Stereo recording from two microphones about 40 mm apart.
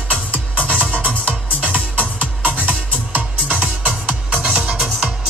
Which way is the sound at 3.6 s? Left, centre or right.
Right.